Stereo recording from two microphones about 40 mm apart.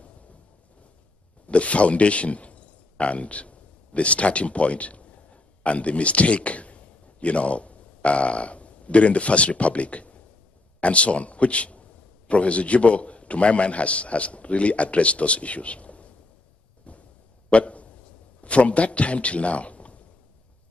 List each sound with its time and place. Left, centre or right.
1.5 s a man's voice: left
17.5 s a sound: left
18.4 s a man's voice: left